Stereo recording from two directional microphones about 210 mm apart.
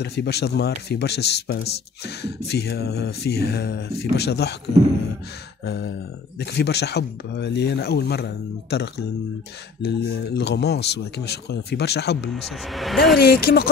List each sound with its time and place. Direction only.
0.0 s speech: 50° left (ahead or behind)
5.7 s speech: 50° left (ahead or behind)
12.4 s speech: centre (ahead or behind)
13.2 s speech: 45° left (ahead or behind)